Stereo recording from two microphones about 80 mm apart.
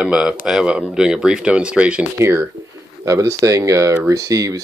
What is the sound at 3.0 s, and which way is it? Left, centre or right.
Speech, right.